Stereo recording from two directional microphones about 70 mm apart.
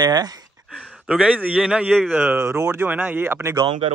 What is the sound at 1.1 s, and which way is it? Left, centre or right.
A man's voice, centre.